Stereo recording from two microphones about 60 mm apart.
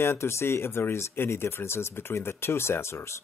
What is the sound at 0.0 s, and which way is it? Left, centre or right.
Speech, left.